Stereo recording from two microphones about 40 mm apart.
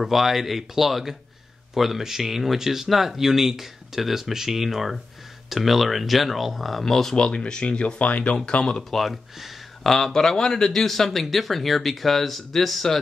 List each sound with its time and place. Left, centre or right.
0.0 s speech: centre
7.2 s speech: centre
8.9 s speech: centre
9.8 s speech: centre